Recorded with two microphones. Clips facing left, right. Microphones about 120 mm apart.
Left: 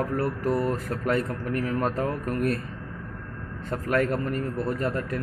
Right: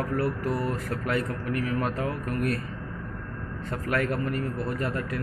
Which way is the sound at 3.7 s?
25° left (ahead or behind).